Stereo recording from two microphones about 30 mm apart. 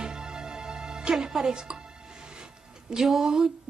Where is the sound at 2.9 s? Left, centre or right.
Centre.